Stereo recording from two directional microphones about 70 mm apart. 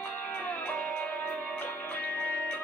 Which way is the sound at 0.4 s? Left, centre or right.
Left.